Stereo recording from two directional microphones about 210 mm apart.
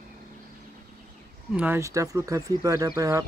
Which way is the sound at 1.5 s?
10° right (ahead or behind).